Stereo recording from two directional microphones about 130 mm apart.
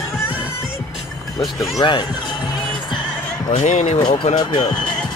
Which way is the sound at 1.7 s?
35° left (ahead or behind).